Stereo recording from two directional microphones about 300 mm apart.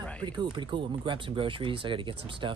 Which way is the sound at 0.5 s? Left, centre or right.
Centre.